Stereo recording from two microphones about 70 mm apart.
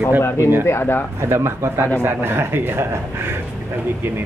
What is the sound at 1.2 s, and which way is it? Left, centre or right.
A man's voice, right.